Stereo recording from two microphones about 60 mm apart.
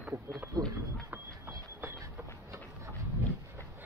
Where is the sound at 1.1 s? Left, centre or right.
Right.